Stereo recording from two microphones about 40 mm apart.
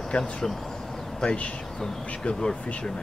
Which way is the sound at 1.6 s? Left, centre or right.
Centre.